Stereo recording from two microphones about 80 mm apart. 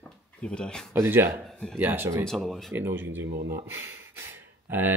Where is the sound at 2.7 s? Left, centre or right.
Right.